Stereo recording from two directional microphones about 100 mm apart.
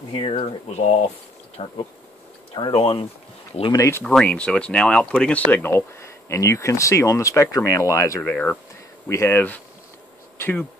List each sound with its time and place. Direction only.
0.1 s speech: 70° left (ahead or behind); by 1.0 s 90° left
1.6 s speech: 75° left (ahead or behind)
2.5 s speech: 55° left (ahead or behind)
3.7 s speech: 30° left (ahead or behind)
4.0 s speech: 10° left (ahead or behind); by 8.2 s 30° left (ahead or behind)
8.2 s speech: 15° left (ahead or behind)
9.1 s speech: 30° left (ahead or behind)